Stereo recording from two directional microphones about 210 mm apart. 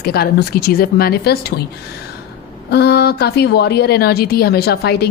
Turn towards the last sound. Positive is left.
turn(degrees=50)  # may be behind; listen again after turning